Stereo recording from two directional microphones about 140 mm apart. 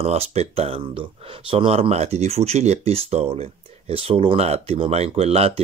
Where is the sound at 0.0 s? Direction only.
50° right (ahead or behind).